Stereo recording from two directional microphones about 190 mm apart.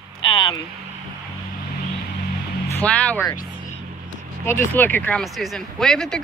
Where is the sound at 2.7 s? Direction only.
10° left (ahead or behind).